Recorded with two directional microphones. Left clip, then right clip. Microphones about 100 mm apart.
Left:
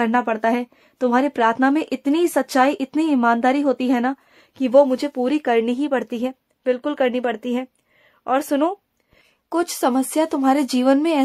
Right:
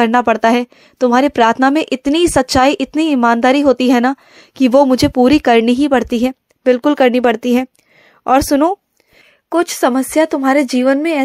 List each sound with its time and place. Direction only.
0.0 s speech: 50° right (ahead or behind); by 5.4 s 80° right
5.4 s a woman's voice: 55° right (ahead or behind); by 11.1 s 20° right (ahead or behind)